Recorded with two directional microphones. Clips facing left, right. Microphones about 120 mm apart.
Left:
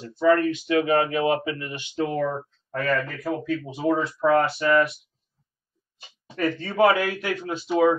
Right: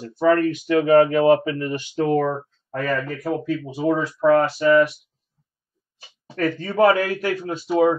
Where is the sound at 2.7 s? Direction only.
40° right (ahead or behind).